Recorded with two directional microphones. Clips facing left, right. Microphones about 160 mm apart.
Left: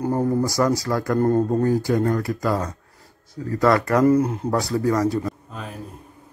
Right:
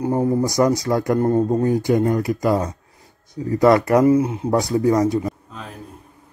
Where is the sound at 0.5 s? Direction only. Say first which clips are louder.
Right 3 dB; 20° right (ahead or behind).